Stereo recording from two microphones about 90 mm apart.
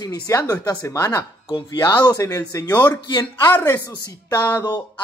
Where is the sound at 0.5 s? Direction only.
40° left (ahead or behind).